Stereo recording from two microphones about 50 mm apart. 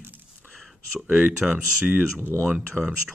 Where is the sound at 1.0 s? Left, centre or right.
Right.